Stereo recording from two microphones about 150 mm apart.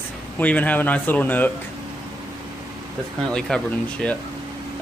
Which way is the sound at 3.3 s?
5° left (ahead or behind).